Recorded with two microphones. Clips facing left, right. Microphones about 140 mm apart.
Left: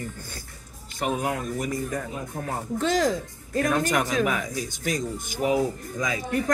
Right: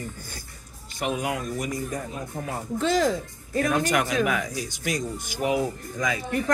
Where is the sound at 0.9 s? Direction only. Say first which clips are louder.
Left 1 dB; 40° left (ahead or behind).